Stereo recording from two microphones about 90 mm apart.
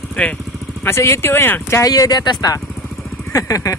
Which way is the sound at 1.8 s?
45° left (ahead or behind).